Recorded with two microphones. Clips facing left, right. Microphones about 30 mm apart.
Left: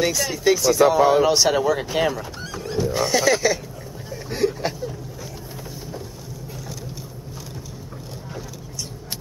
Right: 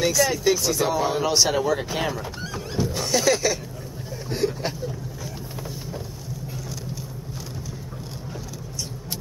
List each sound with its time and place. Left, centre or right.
0.0 s speech: centre
0.8 s speech: centre
1.2 s speech: centre
4.1 s a sound: centre